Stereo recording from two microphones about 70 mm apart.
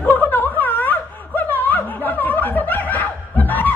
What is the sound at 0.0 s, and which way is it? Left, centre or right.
Snicker, left.